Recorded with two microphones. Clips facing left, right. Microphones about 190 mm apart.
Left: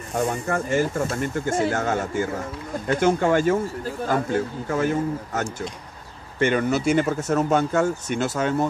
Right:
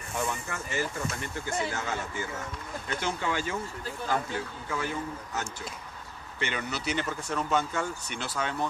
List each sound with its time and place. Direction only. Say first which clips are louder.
0.1 s speech: left 9 dB; 50° left (ahead or behind)